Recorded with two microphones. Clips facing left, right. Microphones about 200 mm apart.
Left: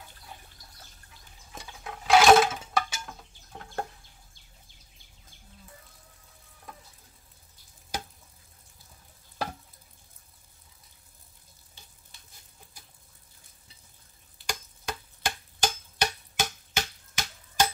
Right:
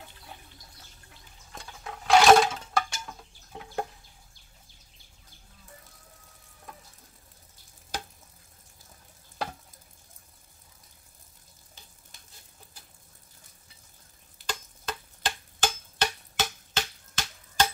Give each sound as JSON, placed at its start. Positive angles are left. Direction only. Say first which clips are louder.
{"t": 1.5, "sound": "a sound", "louder": "even", "side_deg": 5}
{"t": 3.5, "sound": "chicken", "louder": "right 2 dB", "side_deg": -10}
{"t": 14.4, "sound": "tick-tock", "louder": "even", "side_deg": 10}